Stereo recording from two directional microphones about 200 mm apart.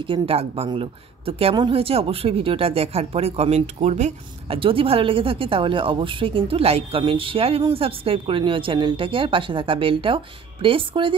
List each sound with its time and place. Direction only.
0.0 s a woman's voice: 25° right (ahead or behind)